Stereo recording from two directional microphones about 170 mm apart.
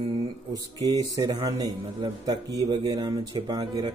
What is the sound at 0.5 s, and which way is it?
A man's voice, 20° right (ahead or behind).